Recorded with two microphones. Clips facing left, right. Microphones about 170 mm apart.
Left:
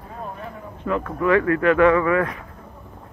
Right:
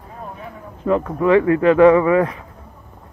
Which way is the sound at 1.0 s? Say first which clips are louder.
Right 3 dB; 25° right (ahead or behind).